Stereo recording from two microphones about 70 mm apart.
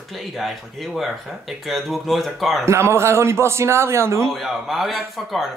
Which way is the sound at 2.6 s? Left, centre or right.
Right.